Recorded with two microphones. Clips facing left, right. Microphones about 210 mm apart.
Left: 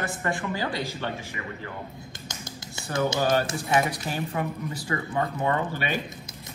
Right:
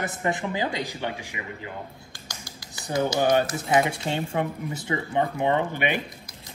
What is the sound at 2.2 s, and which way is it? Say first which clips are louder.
Music: left 3 dB; 25° left (ahead or behind).